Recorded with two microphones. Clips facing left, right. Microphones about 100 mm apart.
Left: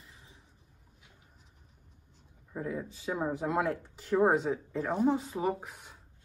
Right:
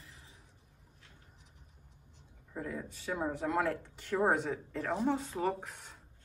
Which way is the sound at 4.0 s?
5° left (ahead or behind).